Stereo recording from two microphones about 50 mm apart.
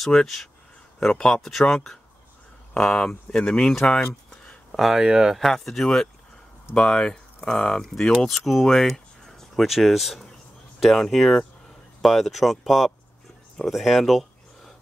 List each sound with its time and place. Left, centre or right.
0.0 s speech: centre
4.9 s speech: centre
5.5 s speech: centre
7.8 s speech: centre